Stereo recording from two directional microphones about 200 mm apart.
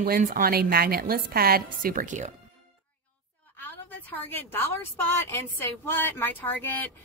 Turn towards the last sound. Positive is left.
turn(degrees=10)  # may be behind; listen again after turning